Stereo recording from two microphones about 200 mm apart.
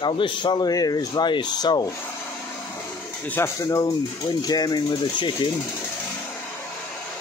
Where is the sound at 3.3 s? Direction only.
15° left (ahead or behind).